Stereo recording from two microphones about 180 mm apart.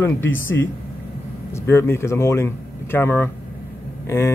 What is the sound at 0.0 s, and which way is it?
Speech, 10° left (ahead or behind).